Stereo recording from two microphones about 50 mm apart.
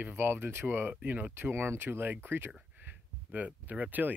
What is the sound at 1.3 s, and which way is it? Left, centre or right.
Speech, right.